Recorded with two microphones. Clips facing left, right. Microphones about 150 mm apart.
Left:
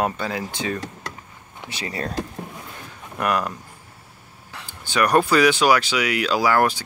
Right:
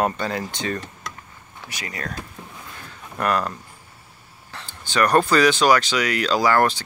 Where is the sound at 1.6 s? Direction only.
25° left (ahead or behind).